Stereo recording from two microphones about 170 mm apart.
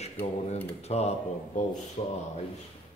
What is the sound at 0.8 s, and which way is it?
Speech, 40° left (ahead or behind).